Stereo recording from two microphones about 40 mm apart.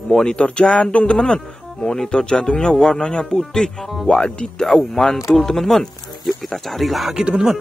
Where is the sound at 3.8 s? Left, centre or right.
Centre.